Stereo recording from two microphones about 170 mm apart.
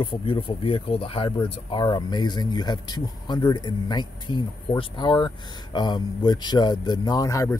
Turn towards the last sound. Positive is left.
turn(degrees=20)  # may be behind; listen again after turning